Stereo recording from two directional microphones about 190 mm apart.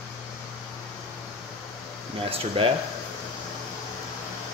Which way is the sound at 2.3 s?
30° right (ahead or behind).